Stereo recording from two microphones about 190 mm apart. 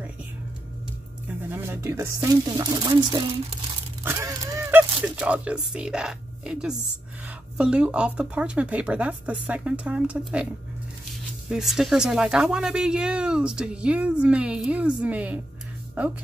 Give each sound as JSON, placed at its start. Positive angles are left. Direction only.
{"t": 1.5, "sound": "speech", "side_deg": -10}
{"t": 4.0, "sound": "honk", "side_deg": -15}
{"t": 5.0, "sound": "speech", "side_deg": -5}